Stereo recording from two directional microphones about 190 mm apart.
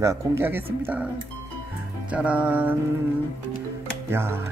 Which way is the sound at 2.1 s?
5° right (ahead or behind).